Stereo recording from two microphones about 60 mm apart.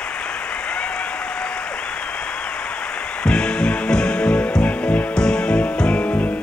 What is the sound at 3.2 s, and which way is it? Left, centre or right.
Music, centre.